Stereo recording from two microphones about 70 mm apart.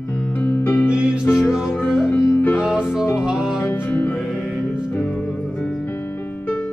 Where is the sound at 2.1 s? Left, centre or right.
Left.